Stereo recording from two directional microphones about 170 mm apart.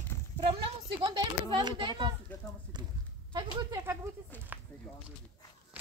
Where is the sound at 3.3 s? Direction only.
25° right (ahead or behind).